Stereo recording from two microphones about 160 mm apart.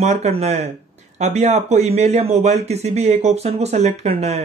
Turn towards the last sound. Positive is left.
turn(degrees=-40)  # may be behind; listen again after turning